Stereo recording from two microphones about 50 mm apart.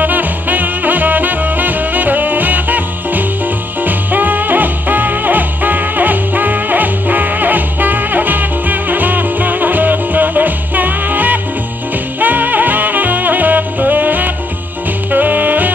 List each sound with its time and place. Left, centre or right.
0.0 s music: right
15.0 s saxophone: right